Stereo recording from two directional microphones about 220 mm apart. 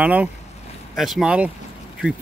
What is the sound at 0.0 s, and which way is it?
Speech, 5° right (ahead or behind).